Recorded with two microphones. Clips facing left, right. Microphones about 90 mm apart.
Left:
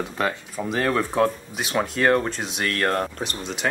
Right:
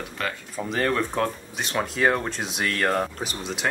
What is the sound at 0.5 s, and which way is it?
Speech, 5° left (ahead or behind).